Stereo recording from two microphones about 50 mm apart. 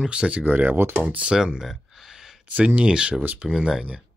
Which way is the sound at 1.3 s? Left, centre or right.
Centre.